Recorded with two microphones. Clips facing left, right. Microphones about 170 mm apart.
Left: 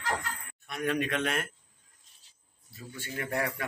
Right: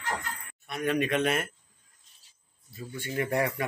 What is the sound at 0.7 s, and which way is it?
Speech, 5° right (ahead or behind).